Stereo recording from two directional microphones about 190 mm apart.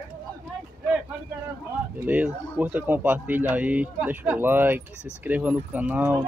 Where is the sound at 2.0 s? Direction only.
10° right (ahead or behind).